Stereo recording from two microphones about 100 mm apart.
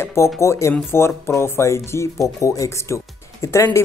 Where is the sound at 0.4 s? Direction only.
30° left (ahead or behind).